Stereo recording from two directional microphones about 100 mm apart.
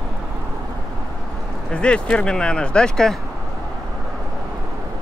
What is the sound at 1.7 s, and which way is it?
Speech, 10° left (ahead or behind).